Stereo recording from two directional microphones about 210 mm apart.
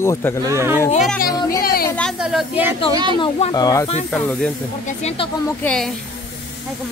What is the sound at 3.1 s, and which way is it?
Speech, 25° left (ahead or behind).